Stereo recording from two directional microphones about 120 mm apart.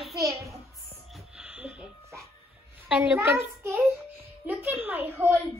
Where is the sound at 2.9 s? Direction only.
10° right (ahead or behind).